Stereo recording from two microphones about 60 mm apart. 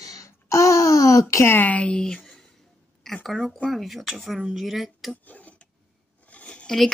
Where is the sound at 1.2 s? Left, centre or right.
Left.